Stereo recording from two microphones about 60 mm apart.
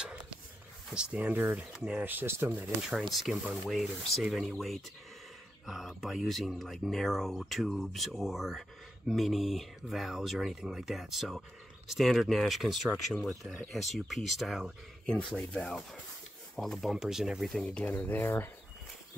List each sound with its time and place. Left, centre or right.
0.9 s speech: centre
1.2 s speech: right
1.7 s speech: centre
2.0 s speech: right
3.0 s speech: centre
4.6 s speech: centre
16.9 s speech: centre
17.5 s speech: centre
17.9 s speech: left